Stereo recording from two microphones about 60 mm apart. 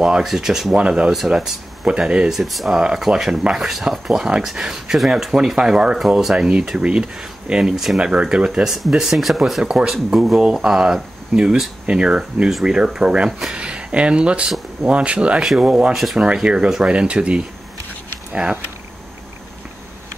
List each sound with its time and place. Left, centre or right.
0.0 s speech: centre
0.7 s speech: centre
8.0 s speech: centre
8.6 s speech: centre; by 18.6 s right